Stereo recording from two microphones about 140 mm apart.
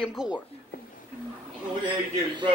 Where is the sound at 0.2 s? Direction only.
5° right (ahead or behind).